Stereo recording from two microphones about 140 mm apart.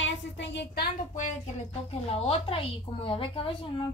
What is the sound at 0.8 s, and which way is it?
Speech, 65° left (ahead or behind).